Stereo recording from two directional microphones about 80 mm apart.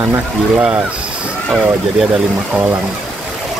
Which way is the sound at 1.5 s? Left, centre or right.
Centre.